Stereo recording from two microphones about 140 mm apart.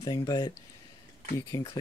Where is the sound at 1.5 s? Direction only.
30° left (ahead or behind).